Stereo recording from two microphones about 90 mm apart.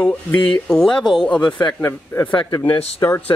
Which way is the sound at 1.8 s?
25° left (ahead or behind).